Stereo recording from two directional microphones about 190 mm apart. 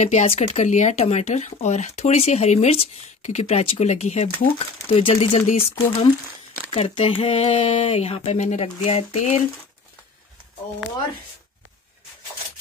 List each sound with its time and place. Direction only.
0.0 s speech: 35° left (ahead or behind)
6.7 s speech: 30° left (ahead or behind)